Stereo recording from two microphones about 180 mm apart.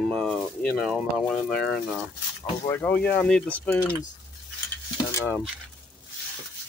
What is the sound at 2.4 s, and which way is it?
Speech, 20° left (ahead or behind).